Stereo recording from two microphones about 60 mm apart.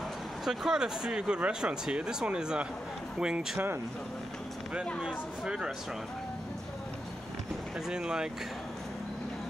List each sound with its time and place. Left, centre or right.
0.5 s speech: centre
3.5 s speech: right
5.0 s speech: centre
7.9 s speech: centre